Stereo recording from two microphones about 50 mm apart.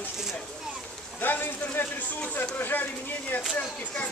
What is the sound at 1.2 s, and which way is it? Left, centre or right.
Speech, left.